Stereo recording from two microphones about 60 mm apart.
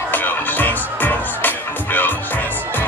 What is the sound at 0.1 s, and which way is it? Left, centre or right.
Music, left.